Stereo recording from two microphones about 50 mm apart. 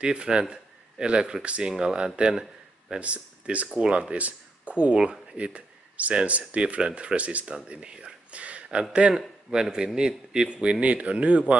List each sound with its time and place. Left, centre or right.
0.0 s a man's voice: centre
4.9 s a man's voice: centre